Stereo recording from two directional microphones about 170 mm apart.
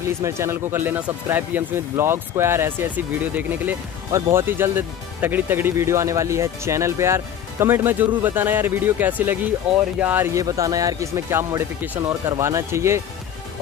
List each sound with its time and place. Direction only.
0.2 s speech: 15° right (ahead or behind)